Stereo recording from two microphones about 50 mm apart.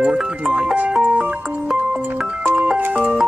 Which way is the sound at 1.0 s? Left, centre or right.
Right.